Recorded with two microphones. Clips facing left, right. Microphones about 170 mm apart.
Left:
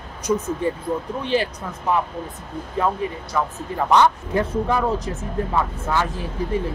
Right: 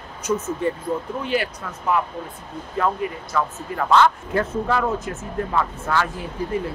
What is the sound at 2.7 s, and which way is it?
Speech, 15° left (ahead or behind).